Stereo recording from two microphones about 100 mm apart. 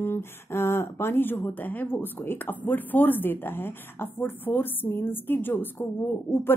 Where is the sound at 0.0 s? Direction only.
25° left (ahead or behind).